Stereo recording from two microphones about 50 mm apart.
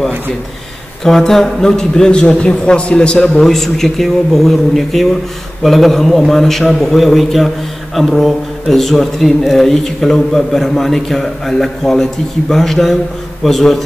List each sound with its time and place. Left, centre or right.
1.0 s a man's voice: centre
3.3 s a man's voice: centre